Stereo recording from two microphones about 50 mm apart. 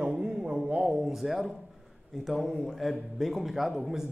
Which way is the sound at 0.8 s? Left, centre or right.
Centre.